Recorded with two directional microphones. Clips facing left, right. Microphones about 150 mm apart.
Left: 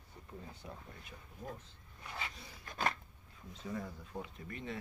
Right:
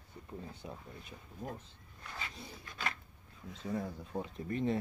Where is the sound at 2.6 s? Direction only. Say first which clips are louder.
Left 5 dB; 40° left (ahead or behind).